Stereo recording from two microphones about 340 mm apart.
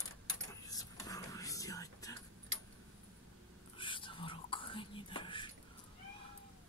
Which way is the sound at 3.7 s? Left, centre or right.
Centre.